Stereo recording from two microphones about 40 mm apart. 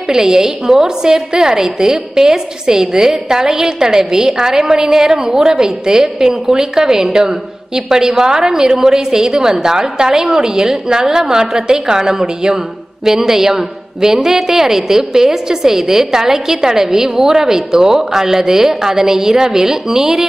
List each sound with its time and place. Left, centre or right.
0.1 s a woman's voice: centre